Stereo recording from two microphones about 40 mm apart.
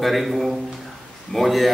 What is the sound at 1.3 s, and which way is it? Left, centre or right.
Speech, centre.